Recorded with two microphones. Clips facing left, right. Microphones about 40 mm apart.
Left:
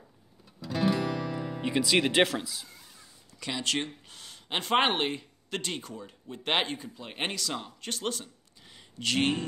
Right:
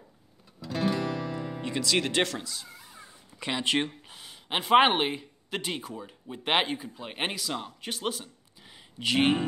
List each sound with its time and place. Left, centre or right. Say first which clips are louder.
0.6 s guitar: left 1 dB; centre
1.6 s speech: left 3 dB; centre
2.8 s cat: right 5 dB; right
4.2 s speech: right 2 dB; centre